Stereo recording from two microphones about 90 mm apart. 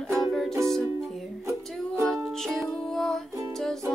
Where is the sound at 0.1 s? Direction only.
5° left (ahead or behind).